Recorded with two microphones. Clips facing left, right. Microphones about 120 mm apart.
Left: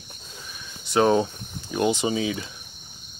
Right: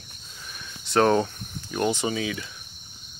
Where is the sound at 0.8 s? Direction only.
10° left (ahead or behind); by 2.5 s 30° left (ahead or behind).